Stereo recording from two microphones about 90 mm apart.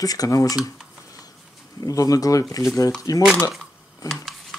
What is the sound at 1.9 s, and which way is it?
Speech, 40° left (ahead or behind).